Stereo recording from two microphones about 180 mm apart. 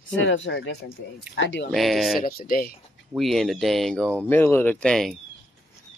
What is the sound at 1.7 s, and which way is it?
Speech, centre (ahead or behind).